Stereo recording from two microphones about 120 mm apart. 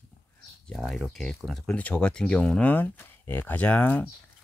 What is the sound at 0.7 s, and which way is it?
Speech, 5° left (ahead or behind).